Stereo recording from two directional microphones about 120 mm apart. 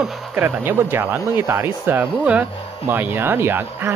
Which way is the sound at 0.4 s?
15° right (ahead or behind).